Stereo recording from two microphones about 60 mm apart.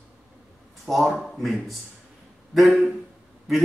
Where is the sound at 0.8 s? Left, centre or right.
Centre.